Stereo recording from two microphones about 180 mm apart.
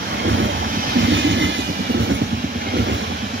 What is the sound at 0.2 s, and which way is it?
Vehicle, 90° right.